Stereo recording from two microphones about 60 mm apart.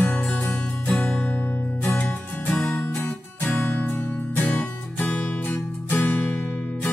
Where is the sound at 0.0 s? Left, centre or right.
Centre.